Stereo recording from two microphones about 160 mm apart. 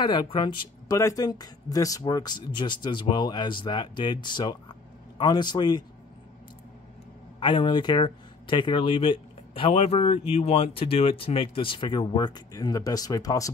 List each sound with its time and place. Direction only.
0.0 s speech: 30° left (ahead or behind)
7.3 s speech: 30° left (ahead or behind)